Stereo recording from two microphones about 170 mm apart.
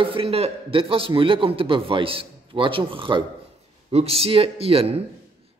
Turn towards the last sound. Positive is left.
turn(degrees=-35)  # may be behind; listen again after turning